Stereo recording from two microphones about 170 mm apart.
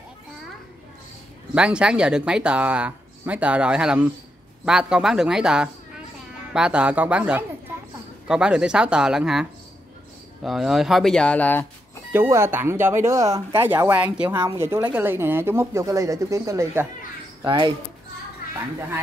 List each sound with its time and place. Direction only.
1.5 s speech: 5° right (ahead or behind)
12.1 s speech: 15° right (ahead or behind)